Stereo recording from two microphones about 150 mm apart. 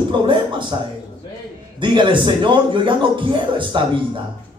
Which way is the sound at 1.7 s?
35° right (ahead or behind).